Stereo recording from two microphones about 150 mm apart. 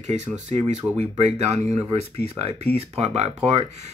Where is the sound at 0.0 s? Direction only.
50° right (ahead or behind).